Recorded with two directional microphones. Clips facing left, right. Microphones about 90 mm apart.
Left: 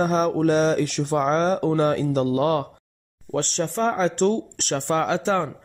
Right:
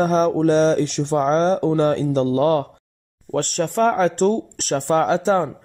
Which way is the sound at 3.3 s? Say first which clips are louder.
Right 3 dB; 50° right (ahead or behind).